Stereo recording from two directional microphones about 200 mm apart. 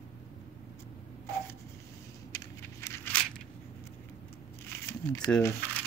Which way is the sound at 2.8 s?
10° left (ahead or behind).